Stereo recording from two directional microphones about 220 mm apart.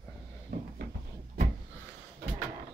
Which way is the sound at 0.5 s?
45° right (ahead or behind).